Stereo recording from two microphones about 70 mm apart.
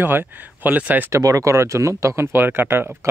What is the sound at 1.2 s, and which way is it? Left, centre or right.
Speech, right.